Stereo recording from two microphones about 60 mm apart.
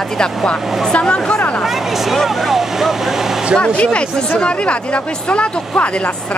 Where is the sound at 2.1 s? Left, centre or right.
Centre.